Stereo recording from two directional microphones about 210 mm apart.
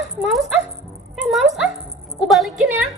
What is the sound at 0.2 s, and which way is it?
Music, centre (ahead or behind).